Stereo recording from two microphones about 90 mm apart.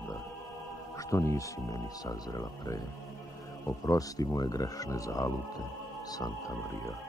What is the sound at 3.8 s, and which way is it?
Speech, 40° left (ahead or behind).